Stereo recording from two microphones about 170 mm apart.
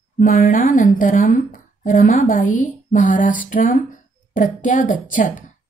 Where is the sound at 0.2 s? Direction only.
50° left (ahead or behind).